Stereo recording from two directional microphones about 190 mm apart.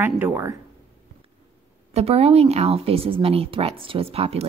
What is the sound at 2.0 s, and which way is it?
Speech, 30° right (ahead or behind).